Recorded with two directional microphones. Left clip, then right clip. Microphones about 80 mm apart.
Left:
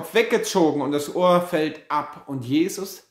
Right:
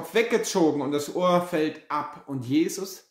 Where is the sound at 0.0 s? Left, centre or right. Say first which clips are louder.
Left 3 dB; left.